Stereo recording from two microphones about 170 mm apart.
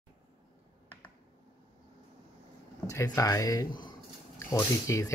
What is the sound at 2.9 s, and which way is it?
Speech, 20° left (ahead or behind).